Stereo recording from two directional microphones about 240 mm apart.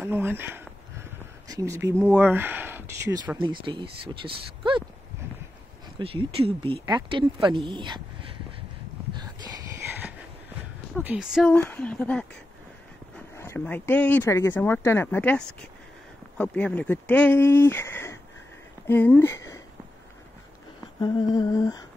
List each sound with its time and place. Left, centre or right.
0.0 s a sound: centre
1.5 s speech: centre
5.9 s speech: right
9.1 s a sound: centre
11.0 s speech: centre
13.4 s speech: centre
21.0 s speech: centre